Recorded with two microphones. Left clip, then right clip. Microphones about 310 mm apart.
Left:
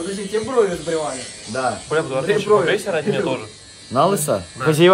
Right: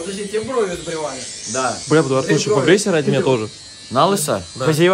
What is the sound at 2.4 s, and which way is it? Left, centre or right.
Speech, right.